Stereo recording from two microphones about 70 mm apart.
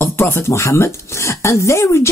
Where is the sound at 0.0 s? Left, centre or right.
Left.